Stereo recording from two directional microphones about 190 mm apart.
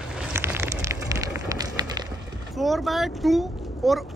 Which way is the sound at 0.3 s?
10° right (ahead or behind).